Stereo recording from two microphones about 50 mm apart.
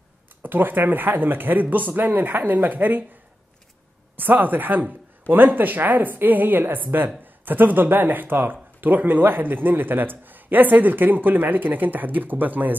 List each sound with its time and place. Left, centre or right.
0.4 s a man's voice: right
4.2 s a man's voice: right